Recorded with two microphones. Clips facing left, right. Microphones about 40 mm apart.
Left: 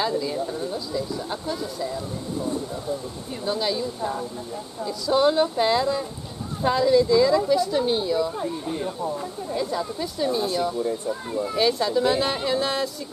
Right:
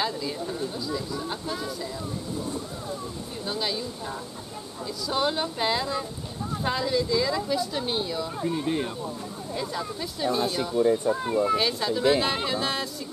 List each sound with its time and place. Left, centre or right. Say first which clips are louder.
0.0 s speech: left 4 dB; centre
3.4 s speech: left 5 dB; centre
4.8 s speech: left 7 dB; centre
8.6 s speech: right 1 dB; right
9.6 s speech: left 4 dB; centre
10.8 s speech: right 4 dB; right
11.5 s speech: left 4 dB; centre